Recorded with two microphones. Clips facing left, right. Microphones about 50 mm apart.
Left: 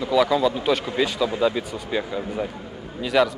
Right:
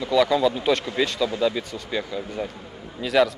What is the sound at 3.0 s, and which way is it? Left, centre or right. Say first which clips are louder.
Speech: even; centre.